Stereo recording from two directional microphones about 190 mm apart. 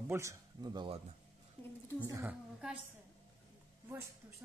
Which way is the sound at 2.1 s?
15° right (ahead or behind).